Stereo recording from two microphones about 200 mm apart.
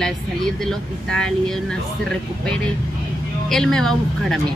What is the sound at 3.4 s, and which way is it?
Speech, centre (ahead or behind).